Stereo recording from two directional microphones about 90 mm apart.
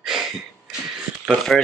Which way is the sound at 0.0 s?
5° right (ahead or behind).